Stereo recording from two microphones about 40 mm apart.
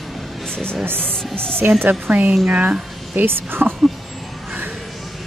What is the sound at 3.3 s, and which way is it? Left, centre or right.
Speech, right.